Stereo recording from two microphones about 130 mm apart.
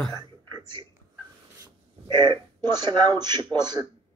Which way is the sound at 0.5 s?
35° right (ahead or behind).